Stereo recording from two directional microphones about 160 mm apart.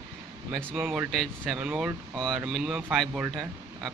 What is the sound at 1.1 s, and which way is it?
Speech, centre (ahead or behind).